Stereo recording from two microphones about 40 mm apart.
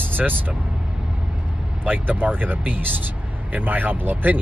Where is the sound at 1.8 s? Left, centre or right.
Right.